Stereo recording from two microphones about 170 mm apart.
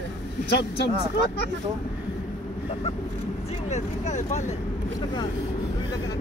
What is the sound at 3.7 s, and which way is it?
Speech, 45° left (ahead or behind).